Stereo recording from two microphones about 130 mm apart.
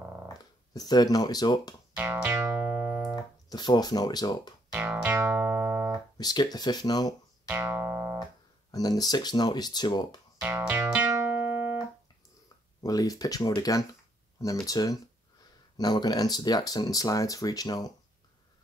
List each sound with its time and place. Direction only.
0.3 s speech: 30° left (ahead or behind)
2.0 s music: 15° right (ahead or behind)
3.4 s speech: 30° left (ahead or behind)
4.7 s music: 15° right (ahead or behind)
6.1 s speech: 35° left (ahead or behind)
7.4 s music: 15° right (ahead or behind)
8.7 s speech: 30° left (ahead or behind)
10.4 s music: 10° right (ahead or behind)
12.8 s speech: 30° left (ahead or behind)